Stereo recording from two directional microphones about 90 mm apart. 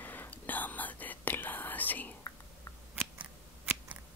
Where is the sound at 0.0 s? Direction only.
20° left (ahead or behind).